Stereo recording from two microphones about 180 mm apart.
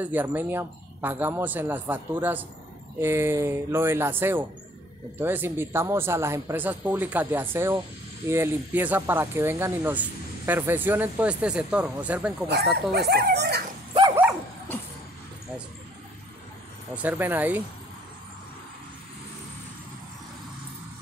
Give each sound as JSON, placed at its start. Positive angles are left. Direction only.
{"t": 0.0, "sound": "speech", "side_deg": -10}
{"t": 12.9, "sound": "speech", "side_deg": -60}
{"t": 16.9, "sound": "speech", "side_deg": -10}